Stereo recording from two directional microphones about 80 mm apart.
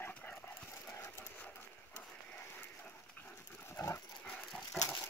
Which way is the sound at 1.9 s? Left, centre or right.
Left.